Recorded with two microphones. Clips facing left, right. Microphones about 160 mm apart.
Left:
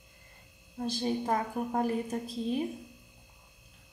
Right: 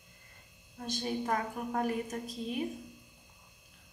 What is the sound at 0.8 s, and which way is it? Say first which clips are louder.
A woman's voice: left 4 dB; 30° left (ahead or behind).